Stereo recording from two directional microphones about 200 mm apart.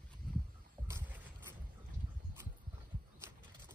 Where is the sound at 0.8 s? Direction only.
10° right (ahead or behind).